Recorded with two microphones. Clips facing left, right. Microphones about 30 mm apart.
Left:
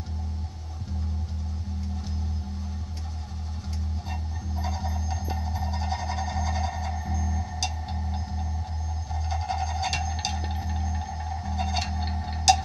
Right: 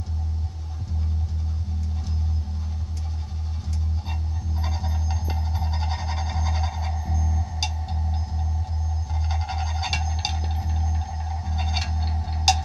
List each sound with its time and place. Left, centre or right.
4.1 s music: centre
6.9 s music: centre
9.1 s music: centre
9.9 s music: centre
11.5 s music: centre
11.9 s music: centre